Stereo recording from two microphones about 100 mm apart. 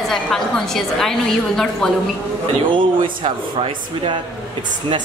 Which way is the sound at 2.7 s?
55° right (ahead or behind).